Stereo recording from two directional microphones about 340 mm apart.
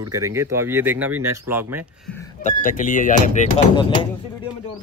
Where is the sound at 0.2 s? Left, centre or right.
Centre.